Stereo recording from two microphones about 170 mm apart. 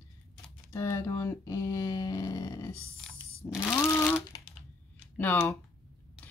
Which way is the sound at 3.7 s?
15° left (ahead or behind).